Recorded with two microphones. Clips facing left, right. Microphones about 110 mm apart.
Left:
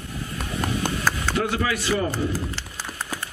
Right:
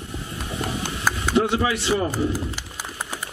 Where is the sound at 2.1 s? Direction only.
15° right (ahead or behind).